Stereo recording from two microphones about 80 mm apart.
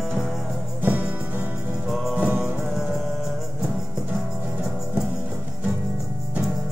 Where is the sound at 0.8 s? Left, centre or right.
Right.